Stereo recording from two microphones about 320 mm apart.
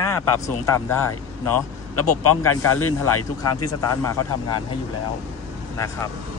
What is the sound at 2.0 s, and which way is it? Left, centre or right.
Speech, left.